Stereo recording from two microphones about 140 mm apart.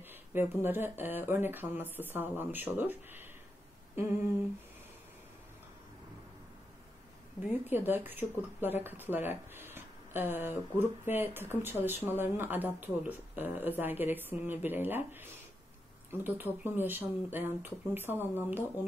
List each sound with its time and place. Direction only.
0.3 s speech: 15° right (ahead or behind)
7.6 s speech: 15° right (ahead or behind)